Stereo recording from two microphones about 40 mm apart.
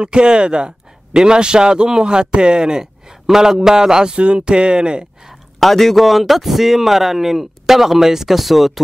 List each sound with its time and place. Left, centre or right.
0.0 s a man's voice: right
5.6 s speech: centre